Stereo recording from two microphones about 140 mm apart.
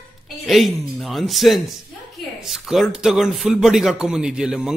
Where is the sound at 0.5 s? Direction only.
Centre (ahead or behind).